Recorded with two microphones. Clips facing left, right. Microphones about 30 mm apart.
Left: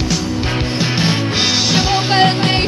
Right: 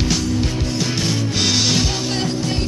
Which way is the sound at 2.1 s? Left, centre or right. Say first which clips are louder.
Left 9 dB; left.